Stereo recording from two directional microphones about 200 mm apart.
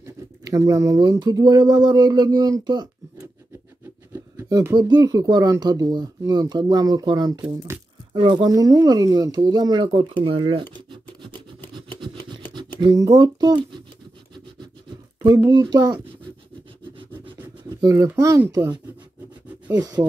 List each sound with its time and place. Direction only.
0.0 s speech: 15° right (ahead or behind)
7.4 s a sound: 10° right (ahead or behind)
8.2 s speech: 20° right (ahead or behind)
11.7 s a sound: 25° right (ahead or behind)
12.8 s speech: 15° right (ahead or behind)
15.2 s speech: 15° right (ahead or behind)
17.7 s speech: 15° right (ahead or behind)